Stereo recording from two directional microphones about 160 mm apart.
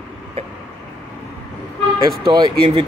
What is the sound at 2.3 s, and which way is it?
Speech, 30° right (ahead or behind).